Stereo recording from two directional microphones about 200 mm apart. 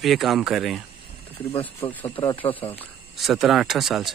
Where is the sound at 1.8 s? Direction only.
25° left (ahead or behind).